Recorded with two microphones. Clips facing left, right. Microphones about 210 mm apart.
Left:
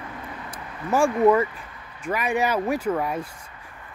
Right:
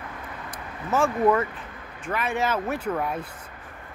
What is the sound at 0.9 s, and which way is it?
Speech, 10° left (ahead or behind).